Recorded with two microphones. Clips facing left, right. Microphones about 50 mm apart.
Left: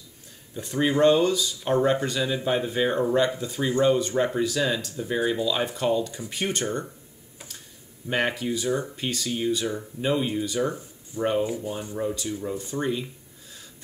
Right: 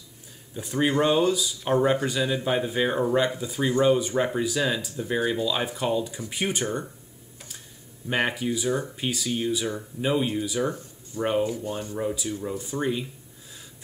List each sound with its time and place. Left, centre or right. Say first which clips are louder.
0.6 s speech: left 1 dB; centre
8.1 s speech: even; centre
11.4 s speech: even; centre
12.0 s speech: left 1 dB; centre